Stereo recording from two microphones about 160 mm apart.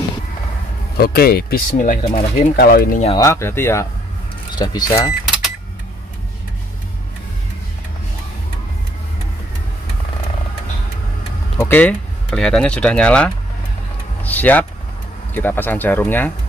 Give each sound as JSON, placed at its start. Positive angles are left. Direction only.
{"t": 0.9, "sound": "speech", "side_deg": 70}
{"t": 2.2, "sound": "speech", "side_deg": 45}
{"t": 2.5, "sound": "speech", "side_deg": 75}
{"t": 3.2, "sound": "speech", "side_deg": 15}
{"t": 4.6, "sound": "speech", "side_deg": 25}
{"t": 11.6, "sound": "speech", "side_deg": 10}